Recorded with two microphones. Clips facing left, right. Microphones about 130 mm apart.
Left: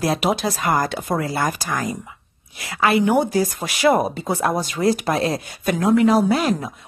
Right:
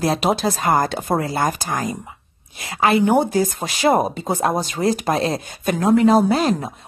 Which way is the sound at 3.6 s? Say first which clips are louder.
Left 1 dB; 25° right (ahead or behind).